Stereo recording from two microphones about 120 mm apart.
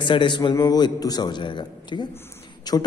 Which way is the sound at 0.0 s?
40° left (ahead or behind).